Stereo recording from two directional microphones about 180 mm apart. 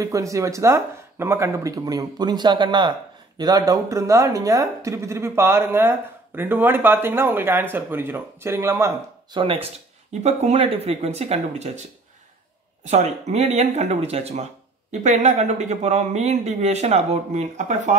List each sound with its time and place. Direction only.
0.0 s speech: 15° right (ahead or behind)
9.4 s speech: 30° right (ahead or behind)
12.8 s speech: 40° right (ahead or behind)